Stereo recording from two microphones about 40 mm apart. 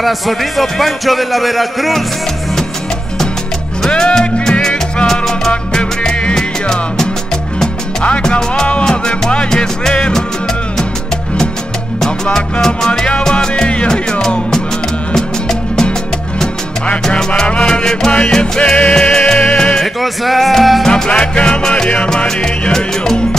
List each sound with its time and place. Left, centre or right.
0.0 s a man's voice: centre
3.9 s music: centre
5.0 s salsa music: centre
5.7 s music: left
8.3 s speech: centre
8.8 s music: centre
12.6 s music: centre
17.5 s music: left
18.6 s music: left
19.8 s a man's voice: centre
20.8 s music: left
22.4 s music: centre